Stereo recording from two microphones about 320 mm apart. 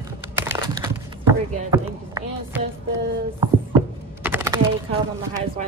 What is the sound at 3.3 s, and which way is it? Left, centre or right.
Typing, centre.